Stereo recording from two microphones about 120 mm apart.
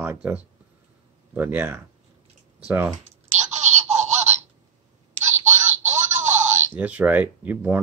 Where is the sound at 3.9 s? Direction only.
70° right (ahead or behind).